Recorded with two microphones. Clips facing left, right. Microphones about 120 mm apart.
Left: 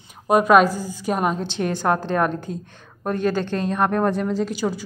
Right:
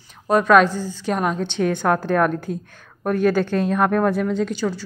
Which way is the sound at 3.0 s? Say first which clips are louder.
Right 3 dB; 5° right (ahead or behind).